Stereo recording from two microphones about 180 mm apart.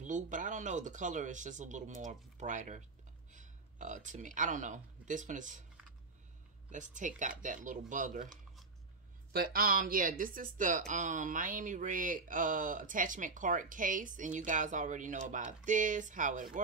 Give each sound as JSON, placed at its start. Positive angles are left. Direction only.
{"t": 0.0, "sound": "speech", "side_deg": -45}
{"t": 6.7, "sound": "speech", "side_deg": -45}